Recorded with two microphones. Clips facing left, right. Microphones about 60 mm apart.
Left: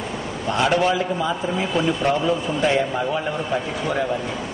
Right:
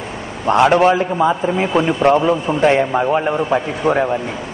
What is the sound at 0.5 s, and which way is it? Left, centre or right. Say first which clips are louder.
A man's voice: right 8 dB; right.